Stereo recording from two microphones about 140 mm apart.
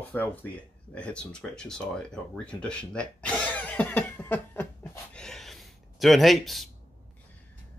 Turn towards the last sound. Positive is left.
turn(degrees=0)  # may be behind; listen again after turning